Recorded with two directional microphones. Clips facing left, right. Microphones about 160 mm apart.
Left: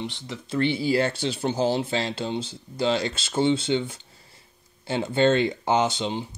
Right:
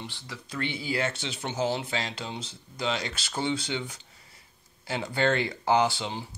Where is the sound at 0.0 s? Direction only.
20° left (ahead or behind).